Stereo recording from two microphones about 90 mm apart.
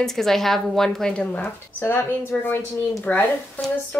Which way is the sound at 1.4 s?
25° left (ahead or behind).